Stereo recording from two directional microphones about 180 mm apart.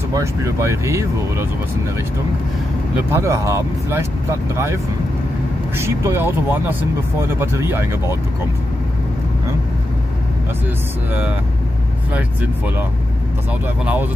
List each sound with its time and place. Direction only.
0.1 s speech: 15° right (ahead or behind)
3.1 s speech: 15° right (ahead or behind)
5.8 s speech: 15° right (ahead or behind)
12.1 s speech: 10° right (ahead or behind)